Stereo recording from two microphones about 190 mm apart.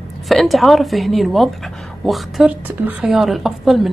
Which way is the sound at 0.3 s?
Centre (ahead or behind).